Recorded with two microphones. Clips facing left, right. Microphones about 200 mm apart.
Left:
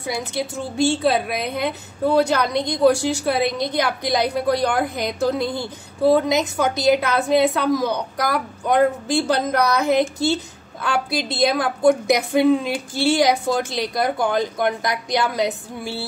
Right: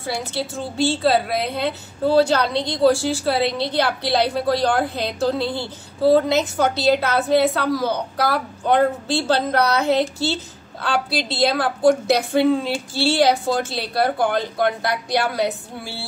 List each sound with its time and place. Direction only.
0.0 s a woman's voice: 15° left (ahead or behind)